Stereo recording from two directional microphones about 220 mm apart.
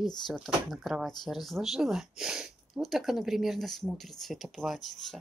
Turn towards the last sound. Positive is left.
turn(degrees=0)  # may be behind; listen again after turning